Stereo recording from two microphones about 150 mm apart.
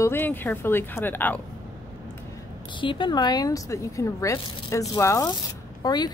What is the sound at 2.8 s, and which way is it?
A woman's voice, 35° left (ahead or behind).